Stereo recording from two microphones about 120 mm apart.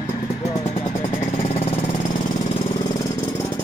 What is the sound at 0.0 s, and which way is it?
Vehicle, 25° left (ahead or behind).